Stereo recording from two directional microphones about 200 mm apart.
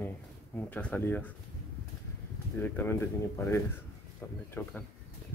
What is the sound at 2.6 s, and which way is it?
Speech, 10° left (ahead or behind).